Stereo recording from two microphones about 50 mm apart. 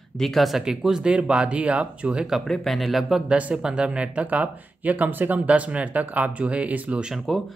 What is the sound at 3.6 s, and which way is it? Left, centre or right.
Speech, centre.